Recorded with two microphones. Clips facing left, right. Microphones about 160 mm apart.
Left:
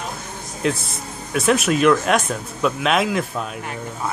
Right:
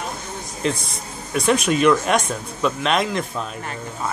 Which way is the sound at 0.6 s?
5° left (ahead or behind).